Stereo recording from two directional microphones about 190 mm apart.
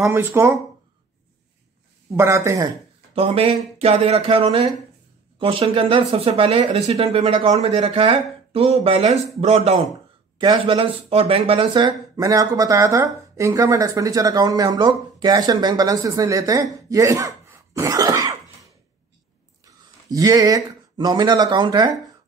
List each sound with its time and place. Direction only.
0.0 s speech: 15° right (ahead or behind)
2.1 s speech: 15° right (ahead or behind)
3.2 s speech: 30° right (ahead or behind)